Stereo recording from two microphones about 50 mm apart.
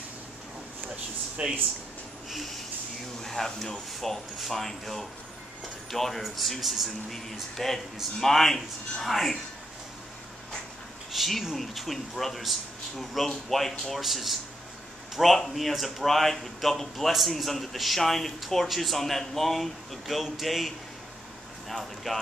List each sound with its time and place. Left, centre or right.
1.4 s speech: right
2.2 s a sound: centre
3.7 s speech: centre
11.1 s speech: centre